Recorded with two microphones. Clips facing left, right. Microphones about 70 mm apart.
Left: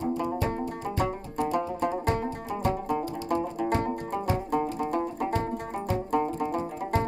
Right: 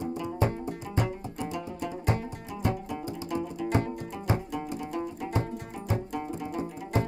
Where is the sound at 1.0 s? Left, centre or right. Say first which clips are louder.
Left 5 dB; left.